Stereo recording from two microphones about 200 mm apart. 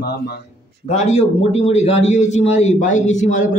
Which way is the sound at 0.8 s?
35° left (ahead or behind).